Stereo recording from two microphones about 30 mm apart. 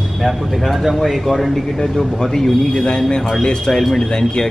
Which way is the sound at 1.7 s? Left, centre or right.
Centre.